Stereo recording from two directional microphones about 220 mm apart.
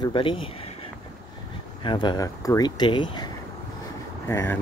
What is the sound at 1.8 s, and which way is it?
Speech, 20° left (ahead or behind).